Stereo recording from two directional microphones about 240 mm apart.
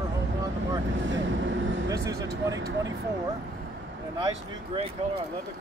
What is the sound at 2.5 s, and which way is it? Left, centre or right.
Speech, right.